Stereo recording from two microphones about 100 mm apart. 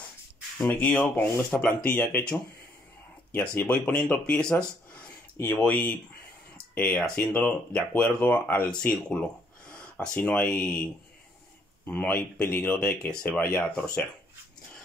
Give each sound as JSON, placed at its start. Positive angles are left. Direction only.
{"t": 0.6, "sound": "speech", "side_deg": 10}
{"t": 9.7, "sound": "a sound", "side_deg": 10}
{"t": 10.1, "sound": "speech", "side_deg": 15}
{"t": 13.0, "sound": "speech", "side_deg": 10}